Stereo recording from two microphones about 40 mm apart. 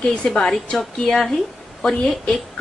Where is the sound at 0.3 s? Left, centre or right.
Centre.